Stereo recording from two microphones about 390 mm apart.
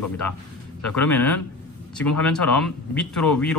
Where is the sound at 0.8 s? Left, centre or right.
Centre.